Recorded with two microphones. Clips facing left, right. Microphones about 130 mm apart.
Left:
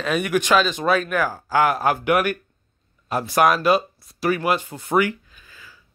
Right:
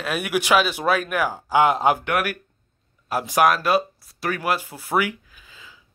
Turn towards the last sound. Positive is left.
turn(degrees=-15)  # may be behind; listen again after turning